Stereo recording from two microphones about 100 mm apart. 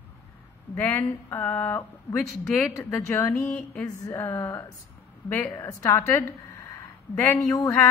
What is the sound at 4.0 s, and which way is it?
A woman's voice, 30° left (ahead or behind).